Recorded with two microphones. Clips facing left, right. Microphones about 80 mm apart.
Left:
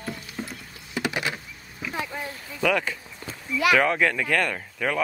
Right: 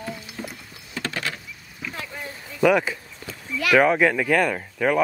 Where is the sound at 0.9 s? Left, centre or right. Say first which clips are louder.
Left 2 dB; centre.